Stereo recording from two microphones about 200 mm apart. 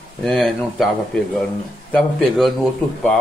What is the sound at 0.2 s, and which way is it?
A man's voice, centre (ahead or behind).